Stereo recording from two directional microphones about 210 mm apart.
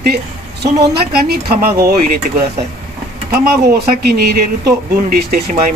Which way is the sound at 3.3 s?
50° right (ahead or behind).